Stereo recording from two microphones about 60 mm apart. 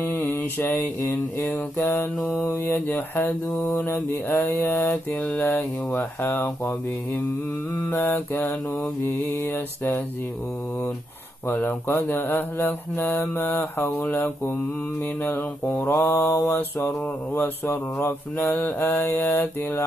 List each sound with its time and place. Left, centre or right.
0.0 s mantra: left
1.8 s mantra: left
7.9 s mantra: left
11.4 s mantra: left
16.8 s mantra: left